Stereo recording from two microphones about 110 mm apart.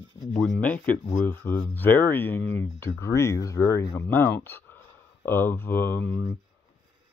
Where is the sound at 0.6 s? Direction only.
15° left (ahead or behind).